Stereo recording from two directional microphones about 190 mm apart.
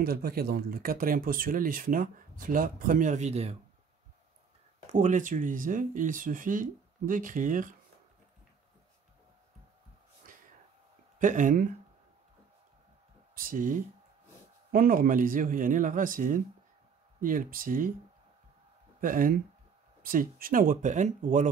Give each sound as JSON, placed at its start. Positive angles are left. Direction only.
{"t": 0.0, "sound": "speech", "side_deg": -50}
{"t": 4.9, "sound": "speech", "side_deg": -40}
{"t": 11.1, "sound": "speech", "side_deg": -45}
{"t": 13.3, "sound": "speech", "side_deg": -45}
{"t": 18.9, "sound": "speech", "side_deg": -45}